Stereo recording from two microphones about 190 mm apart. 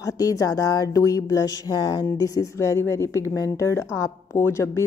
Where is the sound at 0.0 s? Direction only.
20° left (ahead or behind).